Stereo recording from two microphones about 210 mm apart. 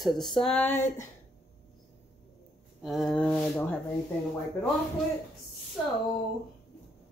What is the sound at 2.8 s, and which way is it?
Speech, centre (ahead or behind).